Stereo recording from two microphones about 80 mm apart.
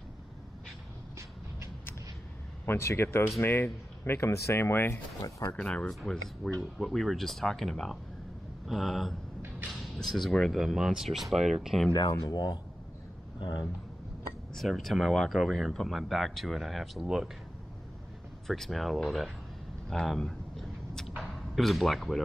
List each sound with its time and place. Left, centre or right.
2.6 s speech: left
5.2 s speech: left
5.6 s speech: centre
5.9 s speech: centre
12.1 s speech: left
14.5 s speech: centre
18.5 s speech: centre
19.9 s a sound: centre
21.2 s speech: centre